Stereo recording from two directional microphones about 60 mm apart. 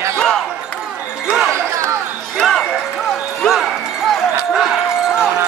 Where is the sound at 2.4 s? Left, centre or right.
Centre.